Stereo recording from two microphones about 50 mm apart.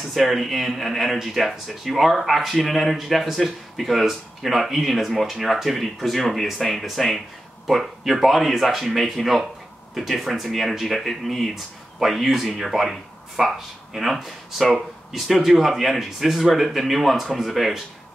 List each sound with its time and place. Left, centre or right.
0.0 s speech: centre